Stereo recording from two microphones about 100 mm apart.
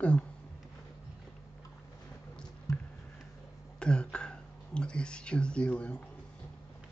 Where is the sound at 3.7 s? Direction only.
10° left (ahead or behind).